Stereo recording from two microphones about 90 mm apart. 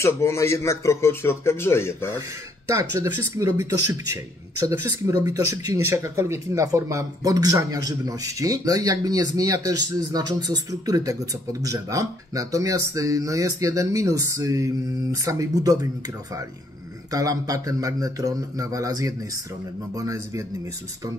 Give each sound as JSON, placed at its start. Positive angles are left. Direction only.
{"t": 0.0, "sound": "speech", "side_deg": 30}
{"t": 2.8, "sound": "speech", "side_deg": -35}
{"t": 17.1, "sound": "speech", "side_deg": -40}